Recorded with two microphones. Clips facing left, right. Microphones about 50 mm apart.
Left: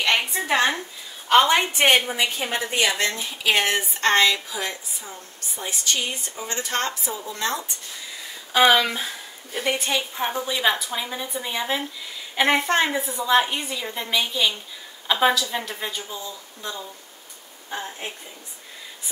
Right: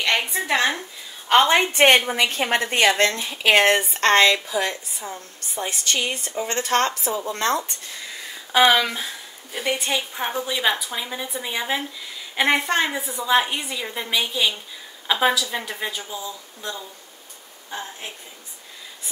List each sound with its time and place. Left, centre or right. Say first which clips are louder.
0.0 s a sound: even; centre
1.3 s a woman's voice: right 1 dB; right
1.7 s a woman's voice: right 3 dB; right
8.7 s a woman's voice: even; centre
17.6 s a woman's voice: left 1 dB; left